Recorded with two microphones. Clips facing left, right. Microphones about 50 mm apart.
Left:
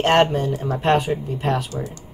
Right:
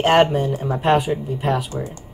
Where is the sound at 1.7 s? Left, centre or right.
Right.